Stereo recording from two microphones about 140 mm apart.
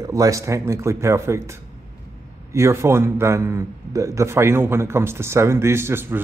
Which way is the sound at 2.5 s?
20° right (ahead or behind).